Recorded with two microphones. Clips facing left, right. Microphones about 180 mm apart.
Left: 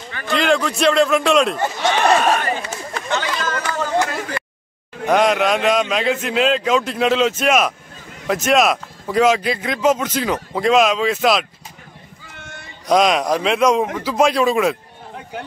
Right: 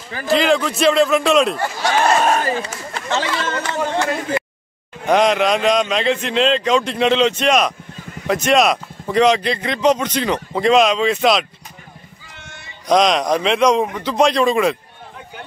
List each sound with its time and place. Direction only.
0.3 s speech: centre (ahead or behind)
1.6 s speech: 20° left (ahead or behind)
2.0 s speech: 35° right (ahead or behind)
5.0 s speech: centre (ahead or behind)
12.8 s speech: 5° left (ahead or behind)